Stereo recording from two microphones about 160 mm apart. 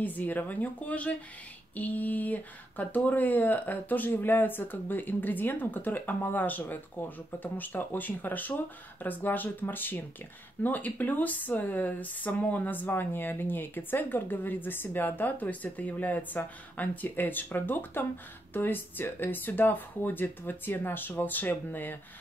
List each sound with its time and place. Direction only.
0.0 s speech: 10° left (ahead or behind)